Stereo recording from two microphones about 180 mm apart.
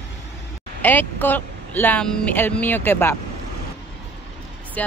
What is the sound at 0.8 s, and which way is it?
Speech, 10° left (ahead or behind).